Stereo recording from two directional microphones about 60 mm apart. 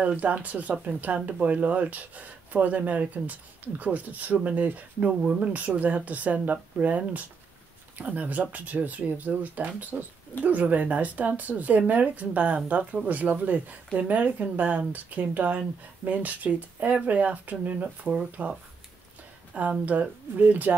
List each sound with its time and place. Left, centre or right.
0.0 s speech: right